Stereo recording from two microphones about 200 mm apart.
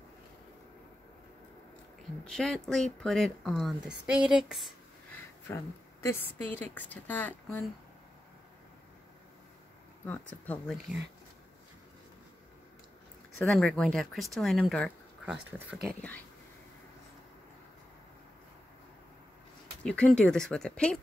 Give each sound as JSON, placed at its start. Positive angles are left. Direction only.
{"t": 2.2, "sound": "speech", "side_deg": 0}
{"t": 6.0, "sound": "speech", "side_deg": 10}
{"t": 10.0, "sound": "speech", "side_deg": 5}
{"t": 13.4, "sound": "speech", "side_deg": 5}
{"t": 19.8, "sound": "speech", "side_deg": 5}